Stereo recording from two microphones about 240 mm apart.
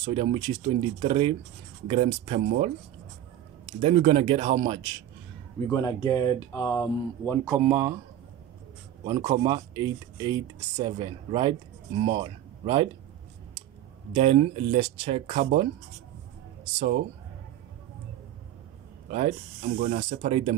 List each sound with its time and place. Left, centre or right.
0.0 s speech: right
3.8 s speech: right
5.7 s speech: centre
7.4 s speech: centre
9.0 s speech: centre
14.1 s speech: right
19.0 s speech: right